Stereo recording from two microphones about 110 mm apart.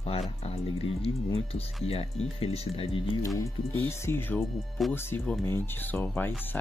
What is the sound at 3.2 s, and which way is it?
Speech, 30° left (ahead or behind).